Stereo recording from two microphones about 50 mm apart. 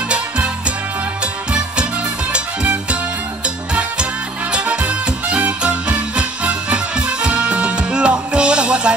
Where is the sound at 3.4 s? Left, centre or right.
Centre.